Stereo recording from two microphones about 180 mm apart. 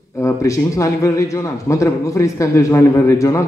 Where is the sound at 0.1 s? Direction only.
15° left (ahead or behind).